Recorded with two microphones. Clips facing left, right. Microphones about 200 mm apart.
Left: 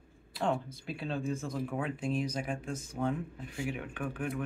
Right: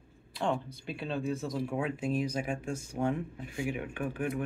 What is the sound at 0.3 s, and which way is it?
Speech, centre (ahead or behind).